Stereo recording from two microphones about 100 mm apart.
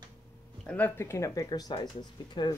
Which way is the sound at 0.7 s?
15° left (ahead or behind).